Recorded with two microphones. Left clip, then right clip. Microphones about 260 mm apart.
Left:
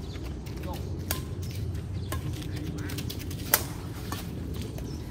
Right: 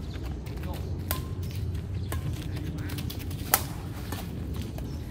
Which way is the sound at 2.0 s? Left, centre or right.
Centre.